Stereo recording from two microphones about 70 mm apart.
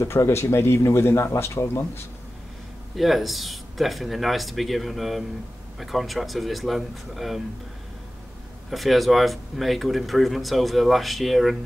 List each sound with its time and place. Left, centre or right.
0.0 s speech: left
3.0 s speech: centre
8.6 s speech: centre